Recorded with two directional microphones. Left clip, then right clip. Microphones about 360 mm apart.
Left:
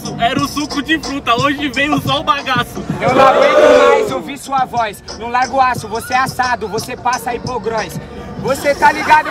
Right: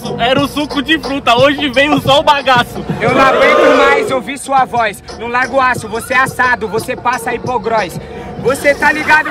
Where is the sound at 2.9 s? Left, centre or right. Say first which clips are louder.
Right 3 dB; centre.